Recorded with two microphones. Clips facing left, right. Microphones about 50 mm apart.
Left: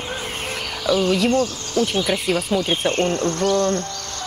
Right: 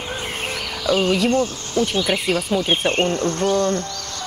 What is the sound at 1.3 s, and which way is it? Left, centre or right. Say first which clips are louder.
Speech: even; right.